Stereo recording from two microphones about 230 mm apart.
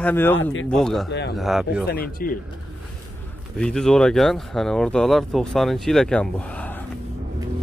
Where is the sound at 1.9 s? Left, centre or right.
Left.